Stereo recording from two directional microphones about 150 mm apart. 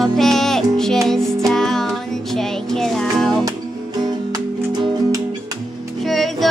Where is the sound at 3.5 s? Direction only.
25° right (ahead or behind).